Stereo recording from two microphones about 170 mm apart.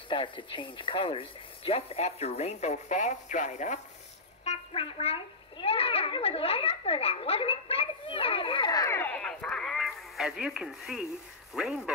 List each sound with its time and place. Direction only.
0.1 s speech: 30° left (ahead or behind); by 3.8 s 45° left (ahead or behind)
4.5 s a sound: 35° left (ahead or behind); by 11.1 s 5° right (ahead or behind)
11.5 s speech: 5° right (ahead or behind)